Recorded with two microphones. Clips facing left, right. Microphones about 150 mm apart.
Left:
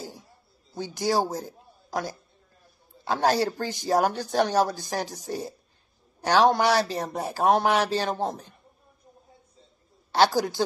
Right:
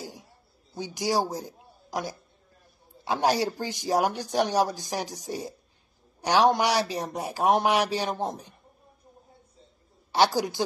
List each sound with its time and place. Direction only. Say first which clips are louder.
0.7 s a man's voice: left 2 dB; 15° right (ahead or behind)
1.3 s a sound: left 2 dB; 15° right (ahead or behind)
3.1 s a man's voice: left 1 dB; 15° right (ahead or behind)
10.1 s a man's voice: left 2 dB; 15° right (ahead or behind)